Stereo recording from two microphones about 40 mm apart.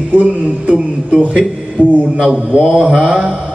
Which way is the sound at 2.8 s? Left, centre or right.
Right.